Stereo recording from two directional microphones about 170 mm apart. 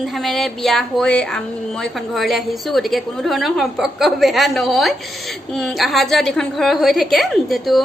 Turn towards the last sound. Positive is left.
turn(degrees=0)  # may be behind; listen again after turning